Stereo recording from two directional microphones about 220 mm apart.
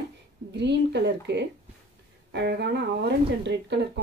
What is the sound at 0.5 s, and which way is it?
Speech, 50° right (ahead or behind).